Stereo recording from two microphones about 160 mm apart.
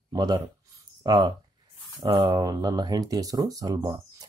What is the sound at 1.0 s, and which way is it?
Speech, 25° right (ahead or behind).